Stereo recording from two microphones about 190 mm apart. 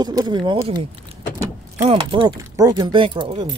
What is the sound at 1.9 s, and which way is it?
Speech, 30° right (ahead or behind).